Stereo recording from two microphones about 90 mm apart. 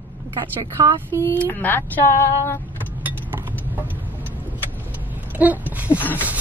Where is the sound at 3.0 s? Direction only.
20° right (ahead or behind).